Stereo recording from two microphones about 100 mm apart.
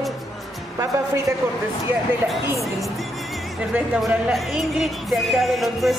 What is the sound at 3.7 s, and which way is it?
Speech, 20° right (ahead or behind).